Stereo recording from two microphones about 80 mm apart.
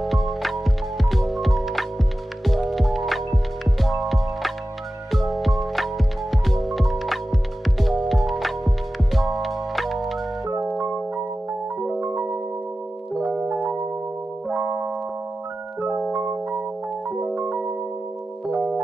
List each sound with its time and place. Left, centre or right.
0.0 s music: centre
10.6 s music: right
11.8 s music: right
16.1 s music: right